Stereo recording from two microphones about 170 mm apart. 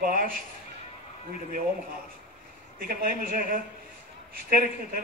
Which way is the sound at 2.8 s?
60° right (ahead or behind).